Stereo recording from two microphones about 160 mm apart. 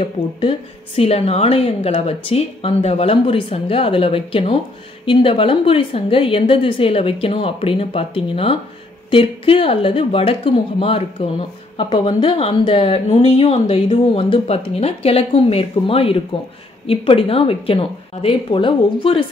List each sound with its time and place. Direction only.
0.0 s speech: 35° left (ahead or behind)